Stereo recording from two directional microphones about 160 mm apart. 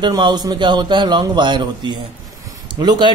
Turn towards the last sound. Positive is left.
turn(degrees=-25)  # may be behind; listen again after turning